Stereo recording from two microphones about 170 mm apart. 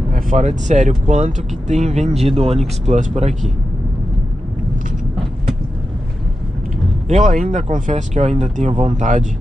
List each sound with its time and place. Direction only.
0.1 s speech: 45° right (ahead or behind)
7.1 s speech: 45° right (ahead or behind)